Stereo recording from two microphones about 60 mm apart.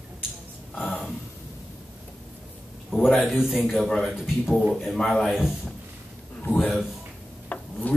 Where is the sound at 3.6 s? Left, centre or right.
Centre.